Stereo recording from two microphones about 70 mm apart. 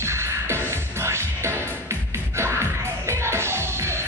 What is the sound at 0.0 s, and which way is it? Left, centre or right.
Music, right.